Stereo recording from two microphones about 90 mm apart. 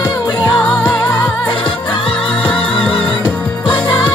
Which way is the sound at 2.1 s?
10° left (ahead or behind).